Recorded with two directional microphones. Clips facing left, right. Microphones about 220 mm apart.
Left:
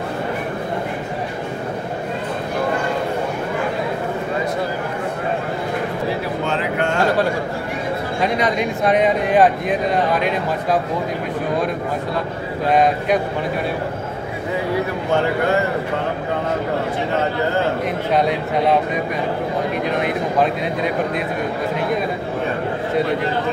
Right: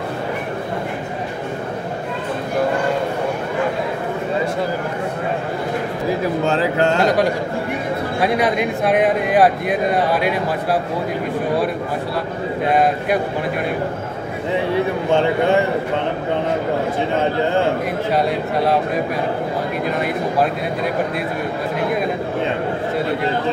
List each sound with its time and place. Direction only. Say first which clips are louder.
6.4 s music: right 4 dB; 40° right (ahead or behind)
8.8 s speech: left 1 dB; 5° right (ahead or behind)
12.7 s speech: left 2 dB; 5° right (ahead or behind)